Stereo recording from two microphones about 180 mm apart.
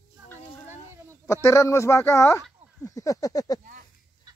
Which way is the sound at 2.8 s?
20° left (ahead or behind).